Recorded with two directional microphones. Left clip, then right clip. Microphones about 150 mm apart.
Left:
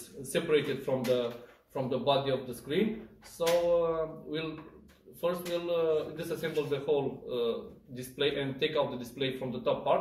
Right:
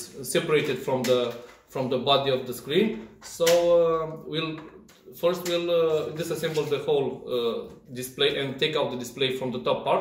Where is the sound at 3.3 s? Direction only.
5° right (ahead or behind).